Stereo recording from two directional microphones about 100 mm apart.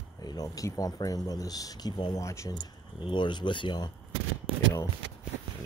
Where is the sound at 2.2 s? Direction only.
30° left (ahead or behind).